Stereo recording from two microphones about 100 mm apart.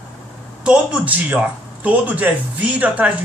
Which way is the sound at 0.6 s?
10° right (ahead or behind).